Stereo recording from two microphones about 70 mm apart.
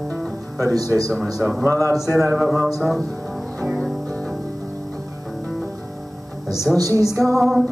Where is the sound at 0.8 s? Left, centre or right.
Left.